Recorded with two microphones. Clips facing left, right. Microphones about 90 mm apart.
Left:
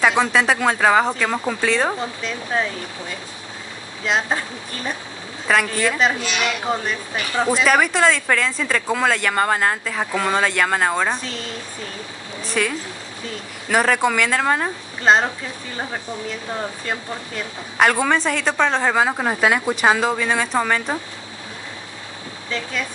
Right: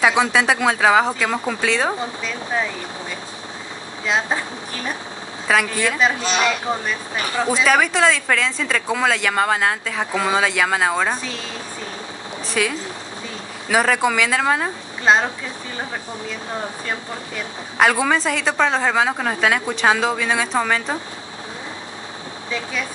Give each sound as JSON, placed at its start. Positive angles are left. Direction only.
{"t": 0.0, "sound": "speech", "side_deg": 0}
{"t": 4.0, "sound": "speech", "side_deg": 0}
{"t": 5.5, "sound": "speech", "side_deg": 0}
{"t": 6.2, "sound": "speech", "side_deg": -35}
{"t": 7.4, "sound": "speech", "side_deg": 0}
{"t": 12.4, "sound": "speech", "side_deg": 0}
{"t": 17.7, "sound": "speech", "side_deg": 0}